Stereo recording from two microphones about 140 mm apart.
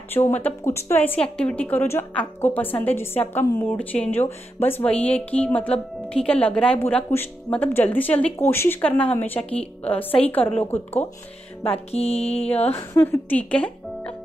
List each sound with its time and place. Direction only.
0.3 s a woman's voice: 15° left (ahead or behind)
11.6 s music: 45° left (ahead or behind)
12.7 s speech: 15° left (ahead or behind)